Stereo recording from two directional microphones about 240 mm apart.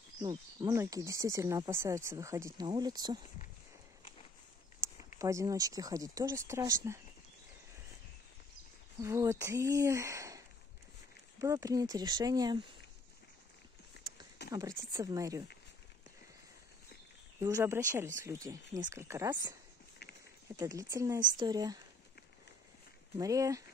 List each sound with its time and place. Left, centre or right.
0.2 s speech: centre
4.8 s a sound: centre
5.2 s speech: centre
9.0 s speech: centre
14.0 s a sound: left
14.9 s speech: centre
17.4 s speech: centre
20.5 s speech: centre
23.1 s speech: centre